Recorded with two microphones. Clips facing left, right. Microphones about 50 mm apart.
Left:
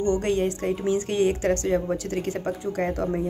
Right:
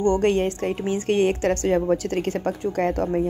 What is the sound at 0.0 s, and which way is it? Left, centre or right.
A woman's voice, right.